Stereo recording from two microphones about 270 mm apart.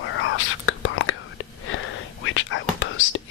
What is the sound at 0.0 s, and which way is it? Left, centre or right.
Whispering, left.